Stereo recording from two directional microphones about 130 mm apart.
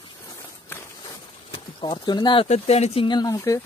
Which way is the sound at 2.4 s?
55° left (ahead or behind).